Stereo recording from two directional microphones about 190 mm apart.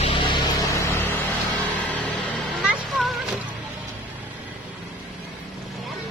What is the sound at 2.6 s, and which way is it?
Music, centre (ahead or behind).